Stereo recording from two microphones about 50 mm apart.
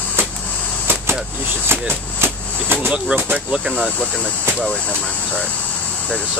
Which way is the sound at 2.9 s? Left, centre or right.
Right.